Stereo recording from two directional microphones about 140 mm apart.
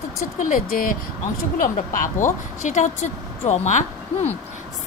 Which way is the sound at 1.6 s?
70° left (ahead or behind).